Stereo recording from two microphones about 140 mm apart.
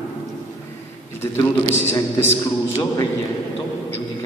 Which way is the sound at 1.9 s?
20° left (ahead or behind).